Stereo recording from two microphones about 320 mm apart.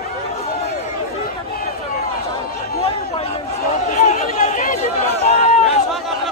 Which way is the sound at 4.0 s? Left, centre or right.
Left.